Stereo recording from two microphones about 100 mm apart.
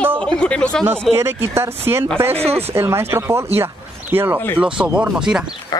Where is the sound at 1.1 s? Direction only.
30° right (ahead or behind).